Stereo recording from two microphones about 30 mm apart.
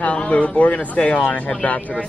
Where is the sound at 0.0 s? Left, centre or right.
Left.